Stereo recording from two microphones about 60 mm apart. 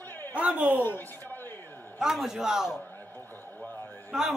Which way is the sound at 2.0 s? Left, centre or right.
Centre.